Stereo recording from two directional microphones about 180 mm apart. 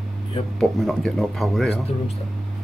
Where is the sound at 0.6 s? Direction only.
Centre (ahead or behind).